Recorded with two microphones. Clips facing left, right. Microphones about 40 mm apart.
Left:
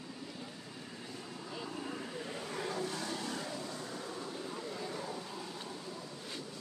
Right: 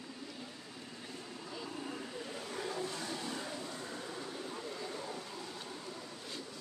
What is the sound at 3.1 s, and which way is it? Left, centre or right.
Vehicle, centre.